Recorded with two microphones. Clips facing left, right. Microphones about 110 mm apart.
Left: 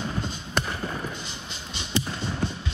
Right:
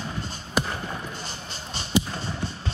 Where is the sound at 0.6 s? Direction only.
5° right (ahead or behind).